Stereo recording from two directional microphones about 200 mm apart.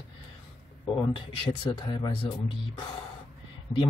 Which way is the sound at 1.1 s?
25° left (ahead or behind).